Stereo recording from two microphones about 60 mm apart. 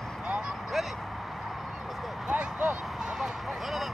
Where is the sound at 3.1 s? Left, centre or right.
Centre.